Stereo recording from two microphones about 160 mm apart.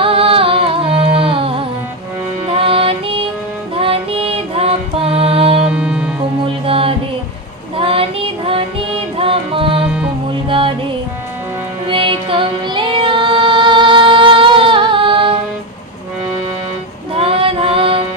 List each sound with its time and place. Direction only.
0.0 s music: 35° right (ahead or behind)
5.7 s music: 5° right (ahead or behind)
6.6 s music: 35° right (ahead or behind)
11.8 s music: 30° right (ahead or behind)
17.1 s music: 35° right (ahead or behind)